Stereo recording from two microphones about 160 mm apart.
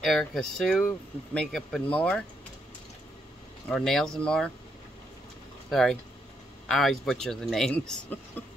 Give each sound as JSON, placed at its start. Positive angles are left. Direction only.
{"t": 0.0, "sound": "speech", "side_deg": 5}
{"t": 3.6, "sound": "speech", "side_deg": 0}
{"t": 5.7, "sound": "speech", "side_deg": 0}